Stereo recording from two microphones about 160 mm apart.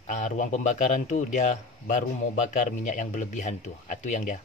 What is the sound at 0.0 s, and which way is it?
Speech, 50° left (ahead or behind).